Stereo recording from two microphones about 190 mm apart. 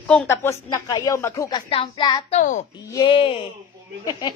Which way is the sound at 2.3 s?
40° left (ahead or behind).